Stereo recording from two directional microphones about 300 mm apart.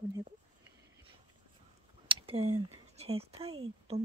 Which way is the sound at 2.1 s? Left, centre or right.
Centre.